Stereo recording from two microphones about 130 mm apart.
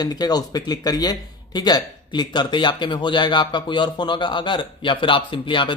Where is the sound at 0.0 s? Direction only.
30° left (ahead or behind).